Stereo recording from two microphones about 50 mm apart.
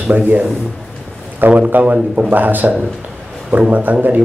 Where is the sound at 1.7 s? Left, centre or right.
Right.